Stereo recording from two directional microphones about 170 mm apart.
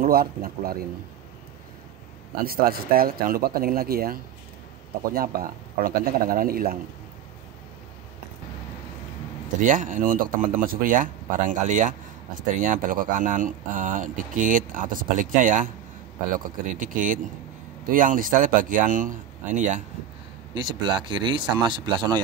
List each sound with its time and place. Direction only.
0.0 s speech: 60° right (ahead or behind)
2.4 s speech: 60° right (ahead or behind)
9.6 s speech: 50° right (ahead or behind)
16.7 s speech: 50° right (ahead or behind)
20.5 s speech: 25° right (ahead or behind)